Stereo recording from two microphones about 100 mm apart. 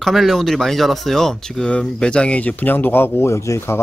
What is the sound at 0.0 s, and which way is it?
Speech, centre (ahead or behind).